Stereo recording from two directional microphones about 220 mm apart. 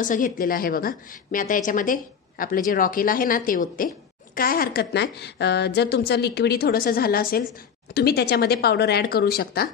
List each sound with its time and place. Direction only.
0.0 s a woman's voice: 40° left (ahead or behind)